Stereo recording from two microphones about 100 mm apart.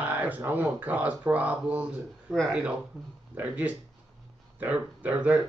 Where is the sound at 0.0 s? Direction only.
20° right (ahead or behind).